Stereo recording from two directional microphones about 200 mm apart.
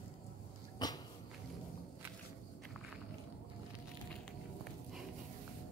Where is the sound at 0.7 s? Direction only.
20° left (ahead or behind).